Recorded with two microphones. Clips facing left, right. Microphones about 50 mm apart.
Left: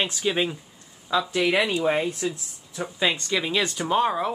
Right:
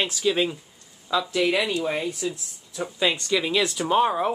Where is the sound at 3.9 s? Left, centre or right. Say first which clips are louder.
Right 2 dB; centre.